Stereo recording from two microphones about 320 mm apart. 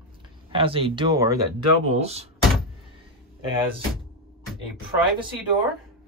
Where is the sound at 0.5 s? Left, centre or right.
Centre.